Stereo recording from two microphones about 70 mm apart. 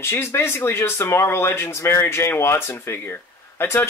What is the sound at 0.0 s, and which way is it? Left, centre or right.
Speech, left.